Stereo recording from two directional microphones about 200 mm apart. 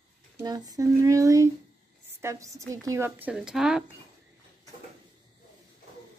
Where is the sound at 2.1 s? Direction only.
15° right (ahead or behind).